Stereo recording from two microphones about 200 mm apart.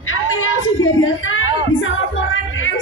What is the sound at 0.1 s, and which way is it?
A woman's voice, 90° left.